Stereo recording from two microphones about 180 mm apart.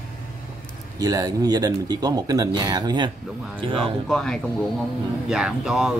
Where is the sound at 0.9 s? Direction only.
20° right (ahead or behind).